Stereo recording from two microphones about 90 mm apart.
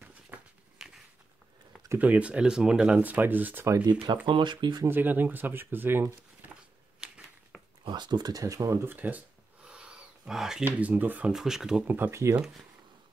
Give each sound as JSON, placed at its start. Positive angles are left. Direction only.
{"t": 0.3, "sound": "a sound", "side_deg": -15}
{"t": 0.7, "sound": "a sound", "side_deg": -5}
{"t": 2.0, "sound": "speech", "side_deg": -15}
{"t": 3.6, "sound": "speech", "side_deg": -35}
{"t": 4.3, "sound": "speech", "side_deg": -60}
{"t": 4.8, "sound": "speech", "side_deg": -20}
{"t": 7.9, "sound": "speech", "side_deg": -50}
{"t": 8.8, "sound": "speech", "side_deg": -20}
{"t": 9.7, "sound": "wild animals", "side_deg": -10}
{"t": 10.6, "sound": "speech", "side_deg": -20}
{"t": 11.3, "sound": "speech", "side_deg": -5}
{"t": 11.9, "sound": "speech", "side_deg": -25}